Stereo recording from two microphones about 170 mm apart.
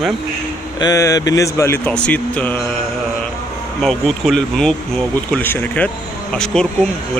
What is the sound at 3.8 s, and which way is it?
Speech, centre (ahead or behind).